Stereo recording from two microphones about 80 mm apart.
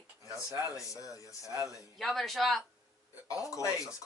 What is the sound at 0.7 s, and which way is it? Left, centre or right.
Speech, left.